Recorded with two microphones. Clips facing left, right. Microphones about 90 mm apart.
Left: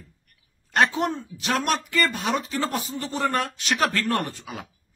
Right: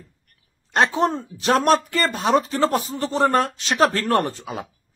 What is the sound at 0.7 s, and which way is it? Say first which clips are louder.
Speech: right 3 dB; 30° right (ahead or behind).